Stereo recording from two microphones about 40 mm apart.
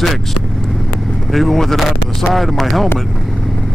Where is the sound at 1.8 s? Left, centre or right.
Centre.